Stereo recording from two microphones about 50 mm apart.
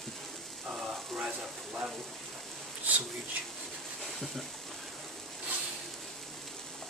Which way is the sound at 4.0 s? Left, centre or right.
Centre.